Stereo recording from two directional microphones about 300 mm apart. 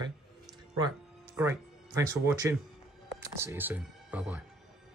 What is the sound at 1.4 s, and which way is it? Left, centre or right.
Speech, centre.